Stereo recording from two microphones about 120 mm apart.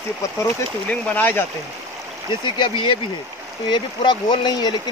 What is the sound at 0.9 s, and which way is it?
Speech, 15° left (ahead or behind).